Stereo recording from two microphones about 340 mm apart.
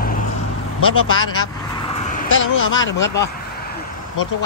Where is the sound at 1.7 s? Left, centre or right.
Centre.